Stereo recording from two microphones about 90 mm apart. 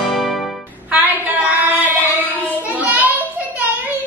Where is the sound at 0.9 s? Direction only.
15° right (ahead or behind).